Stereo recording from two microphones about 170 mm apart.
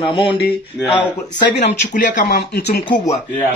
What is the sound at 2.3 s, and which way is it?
Speech, 75° left (ahead or behind).